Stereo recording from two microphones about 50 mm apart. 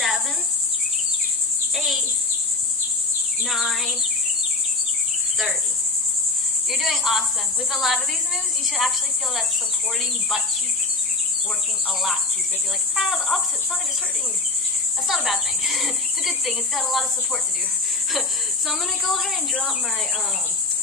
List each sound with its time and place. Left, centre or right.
1.8 s insect: centre
3.4 s speech: centre
6.7 s speech: centre
12.9 s speech: centre
15.0 s speech: centre
18.7 s speech: centre